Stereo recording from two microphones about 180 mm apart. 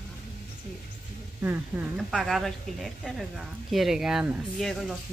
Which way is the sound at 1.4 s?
10° right (ahead or behind).